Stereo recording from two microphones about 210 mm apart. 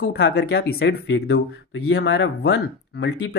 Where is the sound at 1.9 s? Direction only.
55° left (ahead or behind).